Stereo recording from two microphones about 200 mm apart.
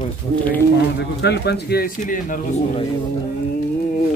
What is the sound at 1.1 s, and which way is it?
A man's voice, 55° left (ahead or behind).